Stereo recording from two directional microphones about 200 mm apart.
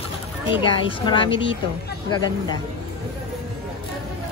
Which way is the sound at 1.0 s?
25° left (ahead or behind).